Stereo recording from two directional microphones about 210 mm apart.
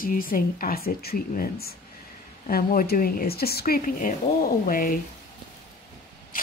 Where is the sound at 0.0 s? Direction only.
40° left (ahead or behind).